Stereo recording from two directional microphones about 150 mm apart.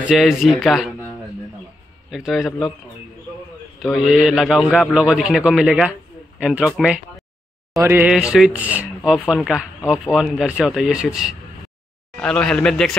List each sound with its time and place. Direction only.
0.0 s a man's voice: 5° right (ahead or behind)
2.0 s a man's voice: centre (ahead or behind)
3.8 s a man's voice: centre (ahead or behind)
7.7 s mantra: 15° right (ahead or behind)
8.1 s a man's voice: 5° right (ahead or behind)
12.2 s a man's voice: 5° left (ahead or behind)